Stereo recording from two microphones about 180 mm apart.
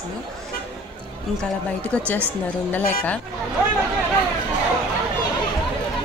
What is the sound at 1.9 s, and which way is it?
Speech, 10° left (ahead or behind).